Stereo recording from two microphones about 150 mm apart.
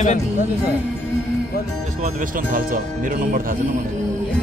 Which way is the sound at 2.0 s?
65° right (ahead or behind).